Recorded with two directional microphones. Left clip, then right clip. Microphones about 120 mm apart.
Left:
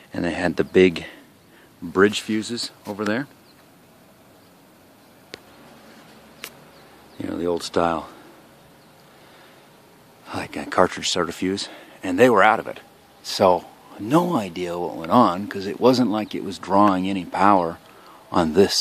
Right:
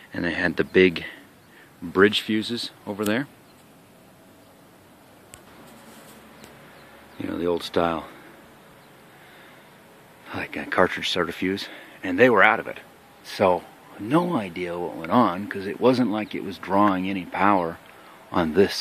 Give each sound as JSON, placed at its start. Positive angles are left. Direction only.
{"t": 0.1, "sound": "speech", "side_deg": 25}
{"t": 1.9, "sound": "speech", "side_deg": 10}
{"t": 7.2, "sound": "speech", "side_deg": 15}
{"t": 10.2, "sound": "speech", "side_deg": 25}